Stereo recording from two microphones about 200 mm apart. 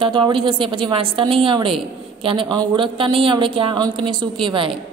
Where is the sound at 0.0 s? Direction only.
25° right (ahead or behind).